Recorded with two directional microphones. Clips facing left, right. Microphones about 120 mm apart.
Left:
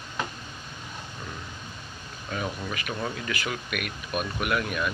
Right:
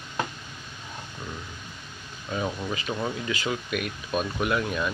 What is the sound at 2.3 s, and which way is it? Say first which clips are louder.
Speech: right 3 dB; 20° right (ahead or behind).